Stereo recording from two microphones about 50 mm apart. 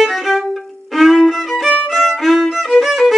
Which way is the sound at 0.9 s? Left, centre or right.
Centre.